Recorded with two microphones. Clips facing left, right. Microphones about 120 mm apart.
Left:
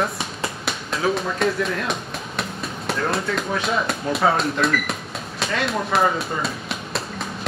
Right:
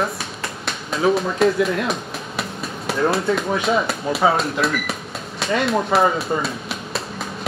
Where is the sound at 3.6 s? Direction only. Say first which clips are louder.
Right 3 dB; centre (ahead or behind).